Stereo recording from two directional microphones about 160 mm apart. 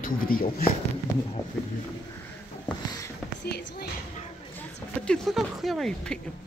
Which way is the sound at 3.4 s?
90° left.